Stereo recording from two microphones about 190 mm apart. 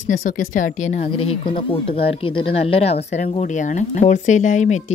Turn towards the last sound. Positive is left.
turn(degrees=40)  # may be behind; listen again after turning